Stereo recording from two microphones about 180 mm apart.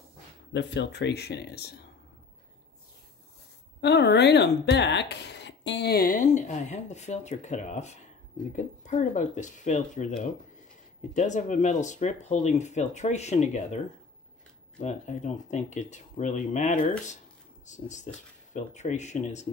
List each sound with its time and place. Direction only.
0.5 s speech: 75° left (ahead or behind)
3.8 s speech: 70° left (ahead or behind); by 10.0 s 45° left (ahead or behind)
11.1 s speech: 45° left (ahead or behind)
14.8 s speech: 40° left (ahead or behind)